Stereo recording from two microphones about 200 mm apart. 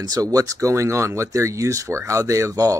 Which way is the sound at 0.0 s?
20° right (ahead or behind).